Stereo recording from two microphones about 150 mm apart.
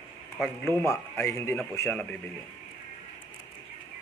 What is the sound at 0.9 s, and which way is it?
A man's voice, 20° left (ahead or behind).